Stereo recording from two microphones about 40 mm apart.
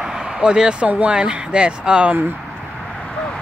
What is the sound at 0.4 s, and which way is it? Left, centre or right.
Speech, right.